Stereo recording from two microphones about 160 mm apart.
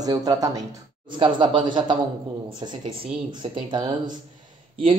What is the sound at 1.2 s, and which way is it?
Speech, 30° right (ahead or behind).